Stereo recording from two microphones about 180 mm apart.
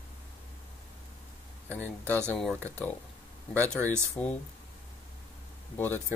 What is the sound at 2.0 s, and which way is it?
Speech, 5° left (ahead or behind).